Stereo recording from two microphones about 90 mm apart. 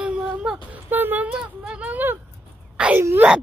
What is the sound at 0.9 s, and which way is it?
Speech, 20° right (ahead or behind).